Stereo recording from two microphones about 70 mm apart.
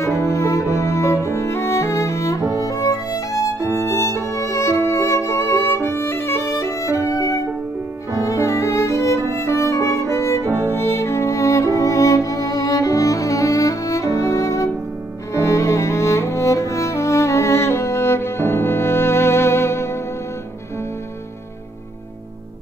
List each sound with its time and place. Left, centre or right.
0.0 s music: left
10.4 s music: right
10.7 s music: left